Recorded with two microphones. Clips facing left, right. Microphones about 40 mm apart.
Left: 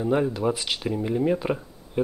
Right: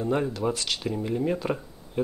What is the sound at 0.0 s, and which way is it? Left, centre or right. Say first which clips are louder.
Speech: left 3 dB; centre.